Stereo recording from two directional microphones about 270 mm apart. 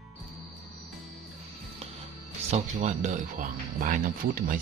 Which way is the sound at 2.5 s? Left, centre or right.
Right.